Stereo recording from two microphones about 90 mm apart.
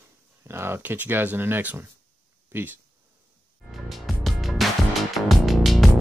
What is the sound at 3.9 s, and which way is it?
Music, centre (ahead or behind).